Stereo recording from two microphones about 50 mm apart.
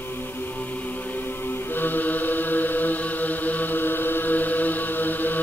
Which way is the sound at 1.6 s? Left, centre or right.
Left.